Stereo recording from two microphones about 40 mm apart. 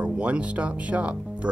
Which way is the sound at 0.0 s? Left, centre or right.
Right.